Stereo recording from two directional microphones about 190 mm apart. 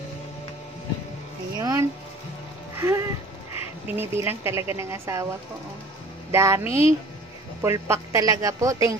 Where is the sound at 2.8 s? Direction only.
15° right (ahead or behind).